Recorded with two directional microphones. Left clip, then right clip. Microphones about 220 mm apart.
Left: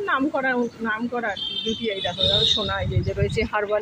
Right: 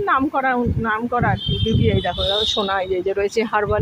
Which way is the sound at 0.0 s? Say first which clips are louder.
Right 4 dB; 45° right (ahead or behind).